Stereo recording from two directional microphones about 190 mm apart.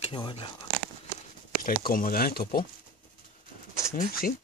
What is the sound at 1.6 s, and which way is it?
Speech, 50° left (ahead or behind).